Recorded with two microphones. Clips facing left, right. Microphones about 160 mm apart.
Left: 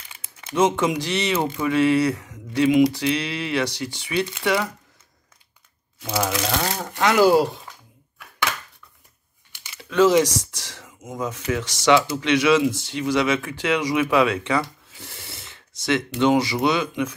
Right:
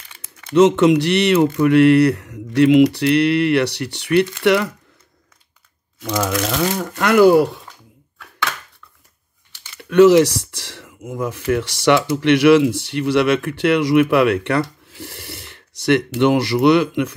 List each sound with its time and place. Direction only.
0.5 s speech: 70° right (ahead or behind)
6.8 s speech: 60° right (ahead or behind)
9.8 s speech: 65° right (ahead or behind)